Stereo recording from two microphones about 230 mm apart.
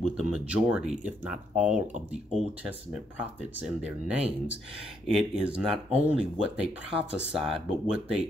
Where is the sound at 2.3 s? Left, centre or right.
Centre.